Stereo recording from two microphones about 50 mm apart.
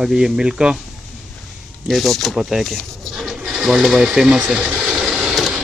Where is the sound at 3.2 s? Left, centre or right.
Centre.